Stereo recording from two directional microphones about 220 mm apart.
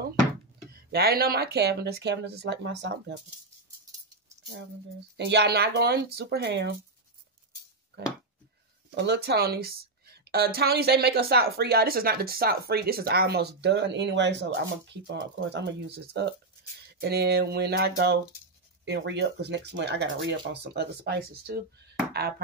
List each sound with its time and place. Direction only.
0.7 s a woman's voice: 45° right (ahead or behind)
5.1 s a woman's voice: 50° right (ahead or behind)
8.9 s a woman's voice: 50° right (ahead or behind)